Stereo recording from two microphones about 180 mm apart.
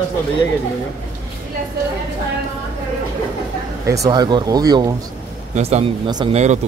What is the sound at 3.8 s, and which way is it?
Speech, 20° right (ahead or behind).